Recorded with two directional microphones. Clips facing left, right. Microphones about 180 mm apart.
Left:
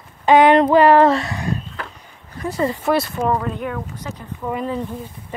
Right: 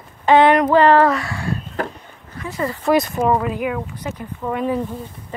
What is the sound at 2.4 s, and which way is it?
Speech, 35° left (ahead or behind).